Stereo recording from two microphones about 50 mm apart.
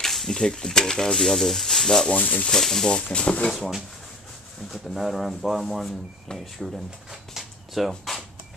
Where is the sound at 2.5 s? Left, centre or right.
Centre.